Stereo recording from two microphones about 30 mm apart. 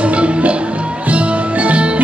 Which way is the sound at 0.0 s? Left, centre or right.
Right.